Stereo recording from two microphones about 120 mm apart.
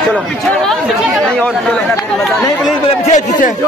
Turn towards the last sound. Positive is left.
turn(degrees=85)